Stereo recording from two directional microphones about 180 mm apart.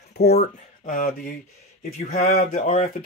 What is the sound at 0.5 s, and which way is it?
Speech, 50° left (ahead or behind).